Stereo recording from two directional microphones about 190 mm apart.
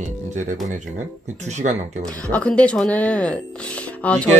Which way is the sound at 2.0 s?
5° left (ahead or behind).